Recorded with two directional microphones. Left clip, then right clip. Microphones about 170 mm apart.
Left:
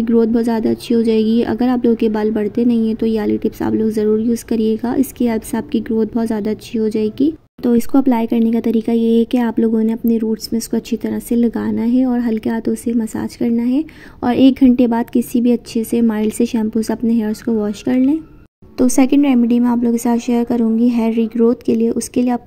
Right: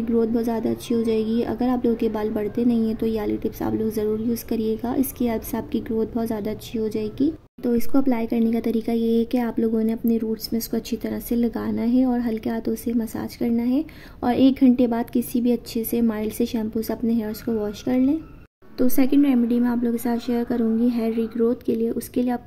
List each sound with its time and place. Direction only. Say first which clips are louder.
0.0 s speech: left 7 dB; 25° left (ahead or behind)
18.8 s a woman's voice: left 6 dB; 35° left (ahead or behind)